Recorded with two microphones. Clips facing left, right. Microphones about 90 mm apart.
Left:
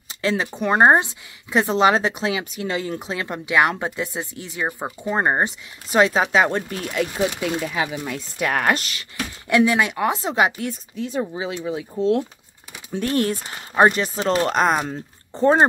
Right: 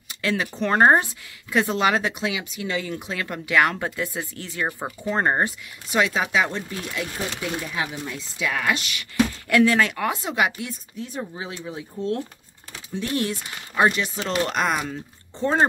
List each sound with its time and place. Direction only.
0.1 s a woman's voice: 25° left (ahead or behind)
3.1 s a woman's voice: 25° left (ahead or behind)
5.9 s speech: 35° left (ahead or behind)
7.3 s speech: 90° left
8.4 s speech: 55° left (ahead or behind)
9.5 s a woman's voice: 15° left (ahead or behind)
11.0 s speech: 90° left
12.9 s speech: 50° left (ahead or behind)